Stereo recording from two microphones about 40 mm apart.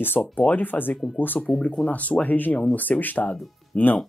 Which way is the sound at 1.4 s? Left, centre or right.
Left.